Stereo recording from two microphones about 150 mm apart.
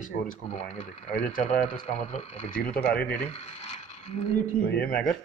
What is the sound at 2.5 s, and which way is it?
Speech, 90° left.